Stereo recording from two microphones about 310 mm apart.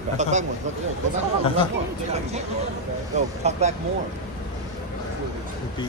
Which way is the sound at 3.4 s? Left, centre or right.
Right.